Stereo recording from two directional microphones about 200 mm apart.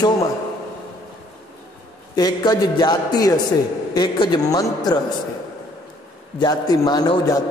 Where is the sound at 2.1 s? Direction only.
20° left (ahead or behind).